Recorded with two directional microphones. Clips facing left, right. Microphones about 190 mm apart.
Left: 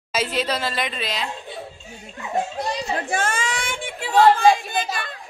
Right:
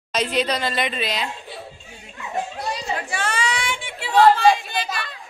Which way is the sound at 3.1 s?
50° left (ahead or behind).